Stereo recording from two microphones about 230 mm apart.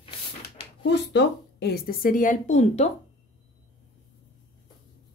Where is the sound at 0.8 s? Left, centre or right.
Left.